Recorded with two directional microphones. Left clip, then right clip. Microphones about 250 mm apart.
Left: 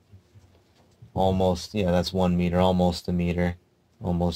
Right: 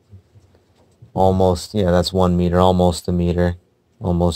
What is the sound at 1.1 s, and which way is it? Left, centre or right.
Speech, right.